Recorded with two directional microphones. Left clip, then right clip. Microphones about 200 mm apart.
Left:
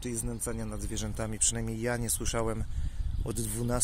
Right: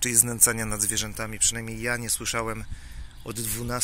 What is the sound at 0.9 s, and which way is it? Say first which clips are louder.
Speech: right 6 dB; 10° left (ahead or behind).